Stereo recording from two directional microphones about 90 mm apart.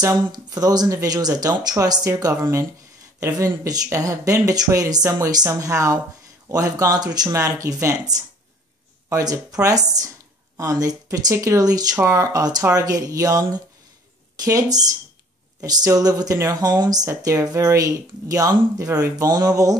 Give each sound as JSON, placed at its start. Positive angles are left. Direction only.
{"t": 0.0, "sound": "speech", "side_deg": -45}
{"t": 9.2, "sound": "speech", "side_deg": -45}
{"t": 12.0, "sound": "speech", "side_deg": -35}